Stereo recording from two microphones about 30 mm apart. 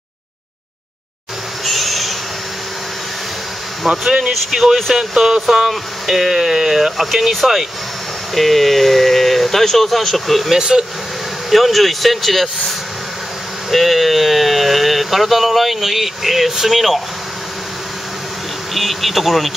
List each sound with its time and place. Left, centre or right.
1.6 s owl: centre
3.8 s speech: centre
7.0 s speech: centre
8.4 s speech: centre
10.6 s speech: right
11.5 s speech: centre
18.8 s speech: centre